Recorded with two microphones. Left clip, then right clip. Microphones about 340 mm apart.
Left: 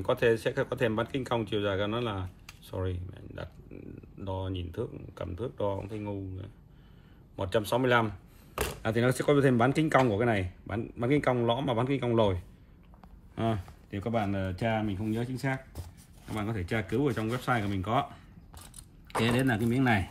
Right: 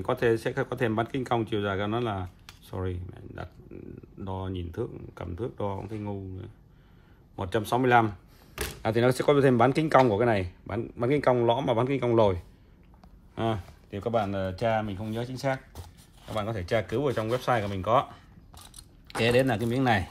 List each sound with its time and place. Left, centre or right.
0.0 s speech: right